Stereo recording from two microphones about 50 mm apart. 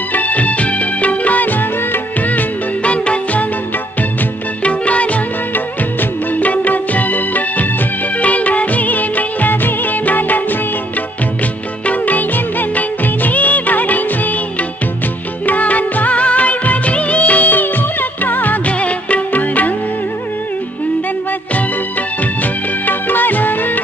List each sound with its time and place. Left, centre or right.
0.1 s music of bollywood: left
4.6 s music: left
8.2 s music of bollywood: left
11.8 s music of bollywood: left
15.4 s music of bollywood: left
18.2 s music: left
22.4 s music: left